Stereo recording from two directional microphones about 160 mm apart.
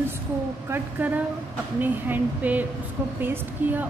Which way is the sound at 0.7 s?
10° right (ahead or behind).